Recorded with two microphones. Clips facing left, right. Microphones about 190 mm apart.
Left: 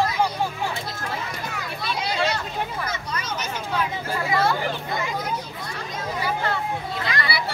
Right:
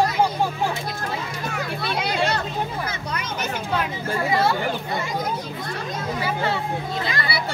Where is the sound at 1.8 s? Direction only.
55° right (ahead or behind).